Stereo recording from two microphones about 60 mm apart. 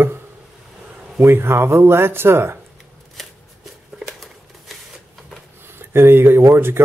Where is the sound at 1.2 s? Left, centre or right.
Right.